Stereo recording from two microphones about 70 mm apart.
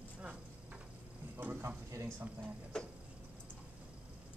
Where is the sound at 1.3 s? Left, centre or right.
Right.